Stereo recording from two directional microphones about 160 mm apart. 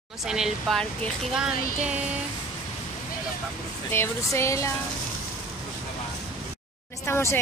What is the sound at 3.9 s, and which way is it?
Speech, 15° left (ahead or behind).